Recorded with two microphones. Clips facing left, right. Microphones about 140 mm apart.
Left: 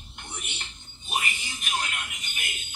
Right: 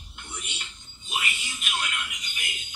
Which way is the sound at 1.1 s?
40° left (ahead or behind).